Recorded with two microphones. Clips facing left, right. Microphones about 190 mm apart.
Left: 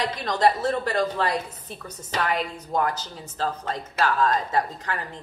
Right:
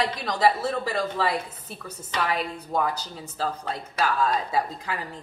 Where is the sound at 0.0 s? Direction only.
5° right (ahead or behind).